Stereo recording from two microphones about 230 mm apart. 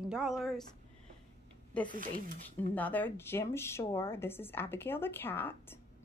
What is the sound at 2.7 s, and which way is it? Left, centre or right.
Speech, centre.